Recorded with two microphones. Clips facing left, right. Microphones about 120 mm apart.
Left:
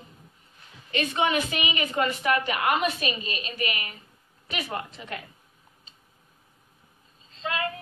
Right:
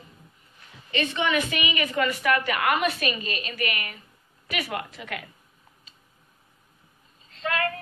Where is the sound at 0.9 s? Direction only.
45° left (ahead or behind).